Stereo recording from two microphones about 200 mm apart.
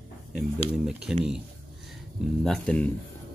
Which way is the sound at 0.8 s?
5° right (ahead or behind).